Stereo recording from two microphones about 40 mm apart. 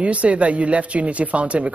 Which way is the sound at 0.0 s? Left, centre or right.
Right.